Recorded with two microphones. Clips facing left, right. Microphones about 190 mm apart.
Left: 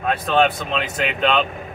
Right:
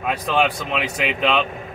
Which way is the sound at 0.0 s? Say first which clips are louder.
Left 2 dB; 10° right (ahead or behind).